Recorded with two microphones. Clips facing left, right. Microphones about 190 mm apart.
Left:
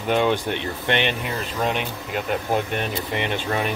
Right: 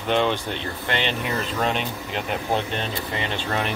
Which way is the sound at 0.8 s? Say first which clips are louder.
Left 3 dB; 20° left (ahead or behind).